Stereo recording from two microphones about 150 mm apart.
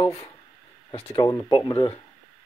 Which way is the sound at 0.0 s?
20° left (ahead or behind).